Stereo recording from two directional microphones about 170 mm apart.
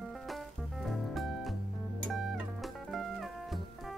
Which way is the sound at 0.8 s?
Centre (ahead or behind).